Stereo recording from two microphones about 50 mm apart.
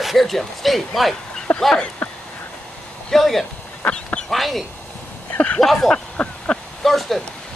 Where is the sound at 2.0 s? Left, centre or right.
Left.